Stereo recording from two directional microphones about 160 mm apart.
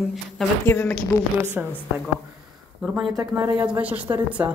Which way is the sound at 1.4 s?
10° right (ahead or behind).